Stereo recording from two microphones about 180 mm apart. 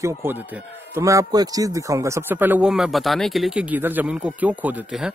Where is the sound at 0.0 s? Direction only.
15° right (ahead or behind).